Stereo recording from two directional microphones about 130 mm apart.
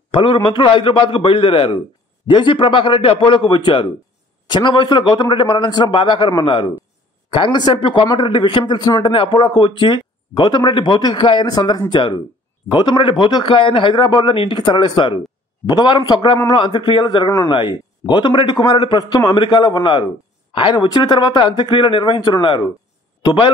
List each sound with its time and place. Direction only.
0.1 s a man's voice: 40° left (ahead or behind)